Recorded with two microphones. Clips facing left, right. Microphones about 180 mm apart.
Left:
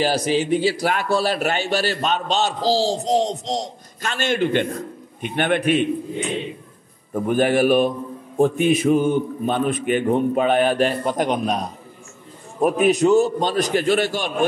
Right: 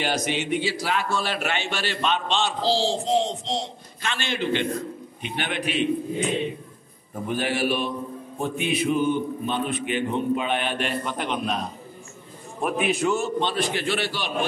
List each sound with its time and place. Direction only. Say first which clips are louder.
0.0 s a man's voice: left 6 dB; 35° left (ahead or behind); by 5.9 s 50° left (ahead or behind)
7.2 s a man's voice: left 8 dB; 50° left (ahead or behind)